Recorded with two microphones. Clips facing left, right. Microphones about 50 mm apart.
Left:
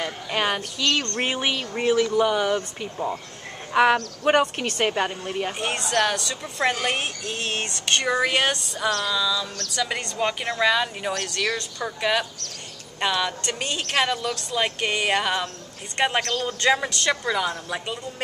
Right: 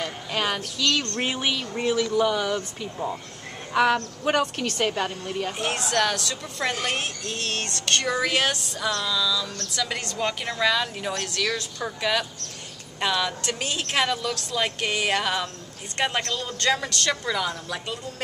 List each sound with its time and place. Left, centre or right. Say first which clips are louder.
0.0 s a sound: left 2 dB; centre
0.7 s a woman's voice: right 1 dB; centre
5.5 s a woman's voice: even; centre